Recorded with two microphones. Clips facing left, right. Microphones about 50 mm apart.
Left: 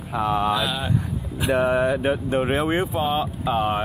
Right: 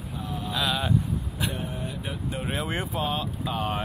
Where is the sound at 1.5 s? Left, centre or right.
Left.